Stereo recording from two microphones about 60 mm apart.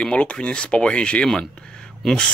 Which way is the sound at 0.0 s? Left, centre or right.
Centre.